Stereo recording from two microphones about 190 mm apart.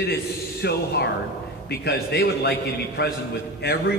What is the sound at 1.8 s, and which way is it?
A man's voice, 60° left (ahead or behind).